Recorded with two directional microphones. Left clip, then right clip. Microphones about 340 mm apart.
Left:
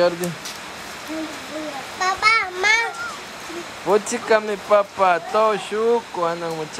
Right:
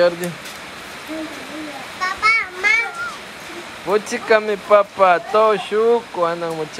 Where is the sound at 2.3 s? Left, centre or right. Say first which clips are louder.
Right 1 dB; centre.